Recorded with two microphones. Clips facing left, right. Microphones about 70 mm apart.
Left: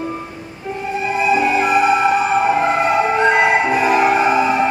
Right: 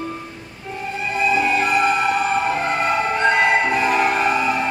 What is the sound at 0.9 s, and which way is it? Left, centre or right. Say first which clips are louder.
Music: left 3 dB; centre.